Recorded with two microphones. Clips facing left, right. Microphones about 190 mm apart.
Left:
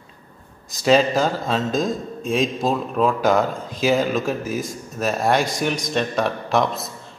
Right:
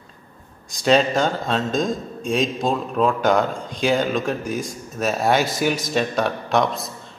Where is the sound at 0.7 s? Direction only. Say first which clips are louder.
Left 1 dB; centre (ahead or behind).